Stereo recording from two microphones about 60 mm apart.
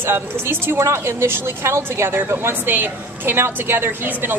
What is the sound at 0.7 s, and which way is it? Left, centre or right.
Speech, right.